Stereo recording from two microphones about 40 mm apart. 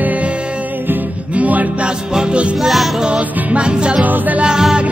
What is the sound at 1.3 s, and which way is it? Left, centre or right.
Music, right.